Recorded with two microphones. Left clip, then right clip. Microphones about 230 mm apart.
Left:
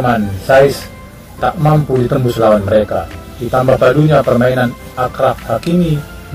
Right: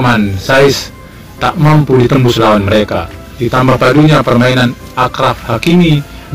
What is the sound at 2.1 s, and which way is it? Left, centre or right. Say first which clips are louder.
A man's voice: right 2 dB; right.